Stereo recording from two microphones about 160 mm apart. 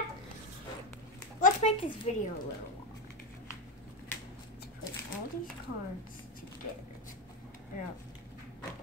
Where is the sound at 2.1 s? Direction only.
45° left (ahead or behind).